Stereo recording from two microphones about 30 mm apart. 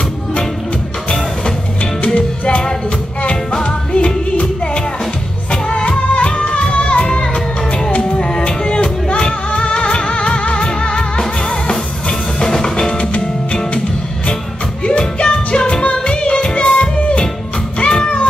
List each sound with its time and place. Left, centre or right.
2.1 s music: left
3.6 s music: left
12.1 s music: left
12.9 s music: left
14.9 s music: left
16.8 s music: left
18.0 s music: left